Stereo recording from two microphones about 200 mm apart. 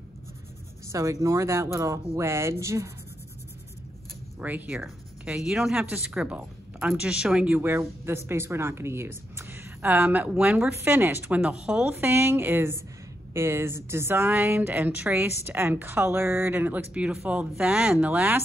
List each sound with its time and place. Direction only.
0.8 s a woman's voice: 15° right (ahead or behind)
4.4 s a woman's voice: 10° right (ahead or behind)